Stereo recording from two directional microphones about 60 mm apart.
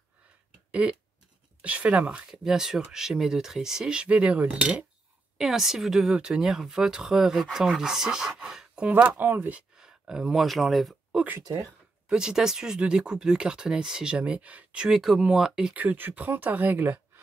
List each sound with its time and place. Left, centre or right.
0.7 s cough: right
1.6 s speech: right
2.4 s speech: centre
5.4 s speech: centre
8.8 s speech: right
9.8 s speech: centre
12.1 s speech: centre
14.9 s speech: centre
15.7 s speech: right